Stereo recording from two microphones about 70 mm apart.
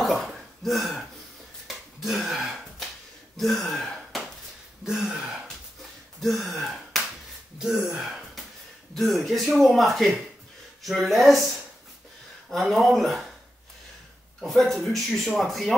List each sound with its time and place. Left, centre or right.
0.0 s a sound: centre
1.7 s finger snapping: centre
3.3 s speech: centre
6.4 s speech: centre
12.4 s speech: centre
14.4 s speech: centre